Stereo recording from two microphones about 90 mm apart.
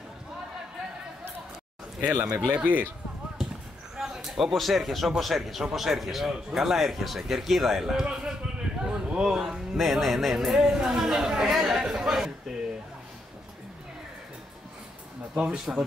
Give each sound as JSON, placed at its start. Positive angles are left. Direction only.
{"t": 2.2, "sound": "speech", "side_deg": -10}
{"t": 3.9, "sound": "speech", "side_deg": -5}
{"t": 15.3, "sound": "speech", "side_deg": -5}